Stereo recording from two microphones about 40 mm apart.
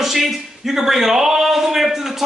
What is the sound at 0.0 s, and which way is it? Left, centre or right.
A man's voice, centre.